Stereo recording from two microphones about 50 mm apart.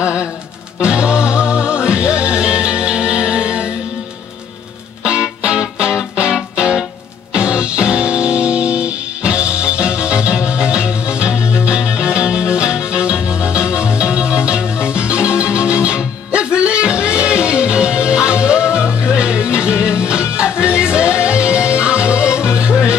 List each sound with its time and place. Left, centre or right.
0.7 s music: right
5.0 s music: right